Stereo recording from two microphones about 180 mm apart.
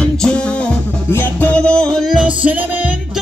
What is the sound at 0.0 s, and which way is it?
Music, 5° left (ahead or behind).